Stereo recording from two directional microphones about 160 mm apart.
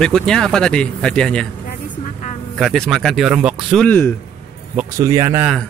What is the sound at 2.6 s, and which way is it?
Speech, centre (ahead or behind).